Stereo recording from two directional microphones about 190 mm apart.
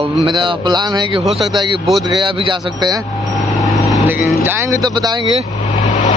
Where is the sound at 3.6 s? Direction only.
Centre (ahead or behind).